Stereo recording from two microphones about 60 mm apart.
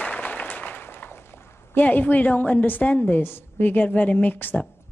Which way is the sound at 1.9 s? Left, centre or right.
Left.